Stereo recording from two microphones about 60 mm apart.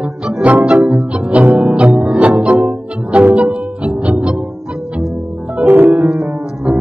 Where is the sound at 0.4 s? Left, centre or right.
Right.